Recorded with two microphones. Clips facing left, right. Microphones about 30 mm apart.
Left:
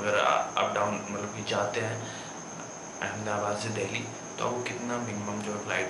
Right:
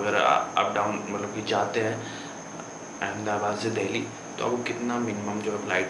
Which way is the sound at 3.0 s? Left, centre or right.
Centre.